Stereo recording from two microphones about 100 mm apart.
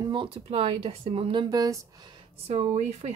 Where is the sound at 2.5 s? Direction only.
90° right.